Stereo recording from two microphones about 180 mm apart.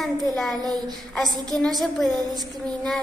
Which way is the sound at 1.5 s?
Centre (ahead or behind).